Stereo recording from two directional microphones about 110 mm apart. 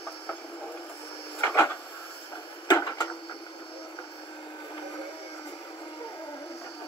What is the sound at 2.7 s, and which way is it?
Wood, 35° left (ahead or behind).